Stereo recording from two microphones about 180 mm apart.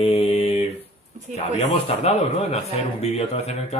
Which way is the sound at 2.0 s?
35° left (ahead or behind).